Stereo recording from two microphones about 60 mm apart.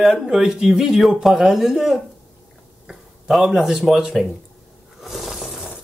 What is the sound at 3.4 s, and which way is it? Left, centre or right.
Speech, centre.